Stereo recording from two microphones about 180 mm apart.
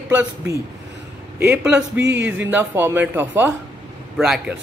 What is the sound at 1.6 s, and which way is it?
Speech, 5° right (ahead or behind).